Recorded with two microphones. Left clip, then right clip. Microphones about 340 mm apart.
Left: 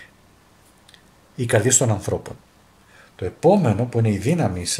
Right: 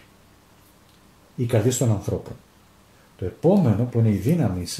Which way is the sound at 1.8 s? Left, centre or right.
Left.